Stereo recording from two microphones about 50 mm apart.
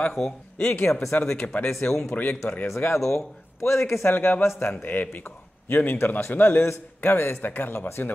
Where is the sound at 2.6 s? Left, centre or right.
Left.